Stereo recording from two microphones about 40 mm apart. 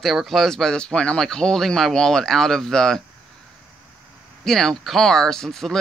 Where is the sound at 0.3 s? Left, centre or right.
Centre.